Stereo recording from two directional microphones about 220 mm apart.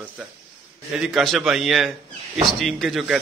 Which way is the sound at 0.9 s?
Centre (ahead or behind).